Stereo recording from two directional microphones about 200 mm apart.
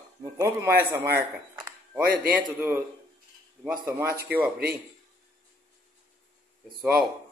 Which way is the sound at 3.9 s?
10° right (ahead or behind).